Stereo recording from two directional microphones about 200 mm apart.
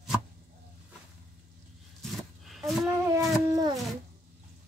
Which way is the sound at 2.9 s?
15° right (ahead or behind).